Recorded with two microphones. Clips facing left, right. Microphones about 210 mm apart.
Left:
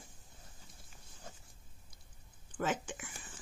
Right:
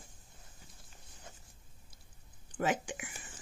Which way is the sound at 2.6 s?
15° right (ahead or behind).